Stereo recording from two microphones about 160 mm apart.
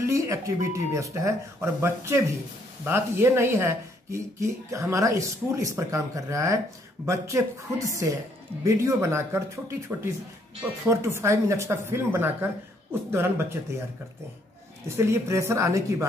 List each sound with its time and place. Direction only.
0.0 s speech: 20° right (ahead or behind)
14.9 s speech: 15° right (ahead or behind)